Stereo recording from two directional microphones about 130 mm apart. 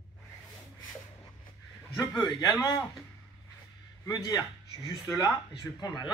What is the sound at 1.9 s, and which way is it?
A man's voice, 30° left (ahead or behind).